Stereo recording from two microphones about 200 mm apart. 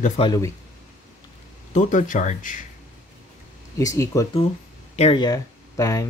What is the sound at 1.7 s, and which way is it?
Speech, 40° left (ahead or behind).